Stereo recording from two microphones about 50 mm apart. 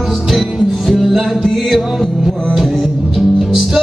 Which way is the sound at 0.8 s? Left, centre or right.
Centre.